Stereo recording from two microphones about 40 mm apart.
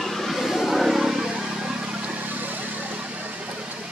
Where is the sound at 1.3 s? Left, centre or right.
Right.